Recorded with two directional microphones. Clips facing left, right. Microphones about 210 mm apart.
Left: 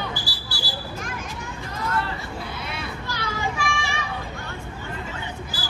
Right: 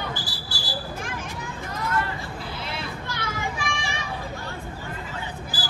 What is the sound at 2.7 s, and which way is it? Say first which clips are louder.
Children playing: even; 20° right (ahead or behind).